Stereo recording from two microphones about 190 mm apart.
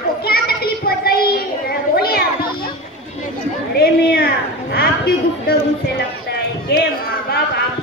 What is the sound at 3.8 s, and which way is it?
A woman's voice, 55° left (ahead or behind).